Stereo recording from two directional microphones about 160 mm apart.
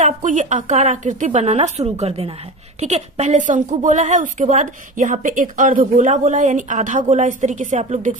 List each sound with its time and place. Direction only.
0.0 s a woman's voice: 50° right (ahead or behind)